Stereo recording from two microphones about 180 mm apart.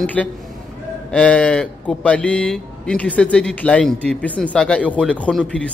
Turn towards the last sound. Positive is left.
turn(degrees=5)  # may be behind; listen again after turning